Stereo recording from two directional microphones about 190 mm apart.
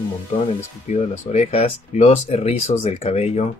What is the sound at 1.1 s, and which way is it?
Speech, 35° left (ahead or behind).